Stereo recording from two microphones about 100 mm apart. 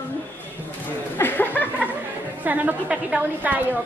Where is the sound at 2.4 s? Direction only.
15° right (ahead or behind).